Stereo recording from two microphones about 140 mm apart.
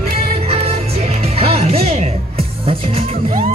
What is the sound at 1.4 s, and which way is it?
Music, 50° right (ahead or behind).